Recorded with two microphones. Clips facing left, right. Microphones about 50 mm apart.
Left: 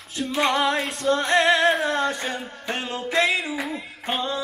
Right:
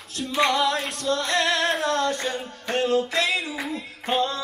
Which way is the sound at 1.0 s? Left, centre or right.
Left.